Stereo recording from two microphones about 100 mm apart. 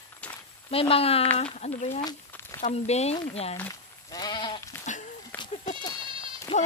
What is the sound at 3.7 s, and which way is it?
Sheep, 40° left (ahead or behind).